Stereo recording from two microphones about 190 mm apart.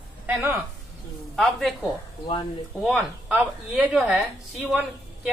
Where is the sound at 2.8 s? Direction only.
5° right (ahead or behind).